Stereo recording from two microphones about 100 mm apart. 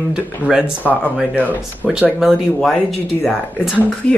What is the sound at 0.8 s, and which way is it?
Speech, 15° left (ahead or behind).